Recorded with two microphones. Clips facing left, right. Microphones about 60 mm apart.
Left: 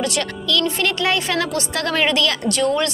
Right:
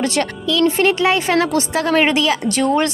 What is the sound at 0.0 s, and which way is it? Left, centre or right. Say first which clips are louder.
Speech: right 4 dB; right.